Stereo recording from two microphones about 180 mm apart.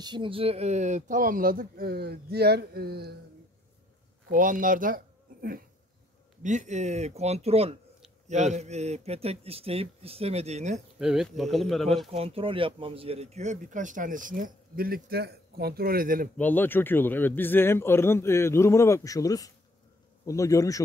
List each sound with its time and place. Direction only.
0.0 s speech: 25° right (ahead or behind); by 3.2 s 60° right (ahead or behind)
4.3 s speech: 50° right (ahead or behind)
6.4 s a man's voice: 40° right (ahead or behind)
11.0 s speech: centre (ahead or behind)
12.1 s speech: 30° right (ahead or behind); by 16.3 s 50° right (ahead or behind)
16.3 s speech: 10° left (ahead or behind)